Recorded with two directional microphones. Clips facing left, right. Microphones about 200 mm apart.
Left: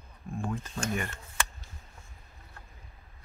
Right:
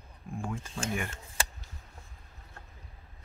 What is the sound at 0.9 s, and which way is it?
Speech, 5° right (ahead or behind).